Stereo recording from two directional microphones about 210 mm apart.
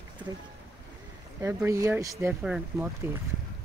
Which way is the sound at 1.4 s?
15° right (ahead or behind).